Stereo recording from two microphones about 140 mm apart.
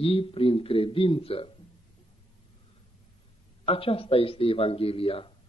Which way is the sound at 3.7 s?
45° left (ahead or behind).